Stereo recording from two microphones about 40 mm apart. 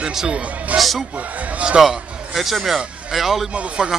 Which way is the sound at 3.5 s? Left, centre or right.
Right.